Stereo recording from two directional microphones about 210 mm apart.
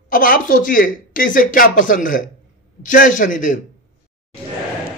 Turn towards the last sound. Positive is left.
turn(degrees=40)  # may be behind; listen again after turning